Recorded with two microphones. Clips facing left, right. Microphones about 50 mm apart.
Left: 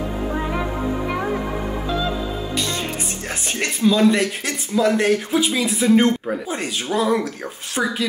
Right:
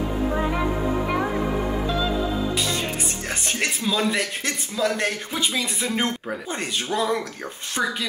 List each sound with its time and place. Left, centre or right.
0.3 s music: centre
2.5 s music: centre
3.4 s speech: centre